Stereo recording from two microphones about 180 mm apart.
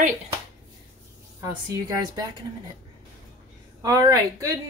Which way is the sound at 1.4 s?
20° right (ahead or behind).